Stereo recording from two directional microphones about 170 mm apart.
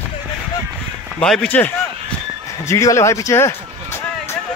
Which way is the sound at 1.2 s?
5° left (ahead or behind).